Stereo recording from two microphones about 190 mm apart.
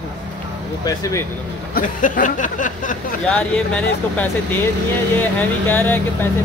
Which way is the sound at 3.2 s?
5° left (ahead or behind).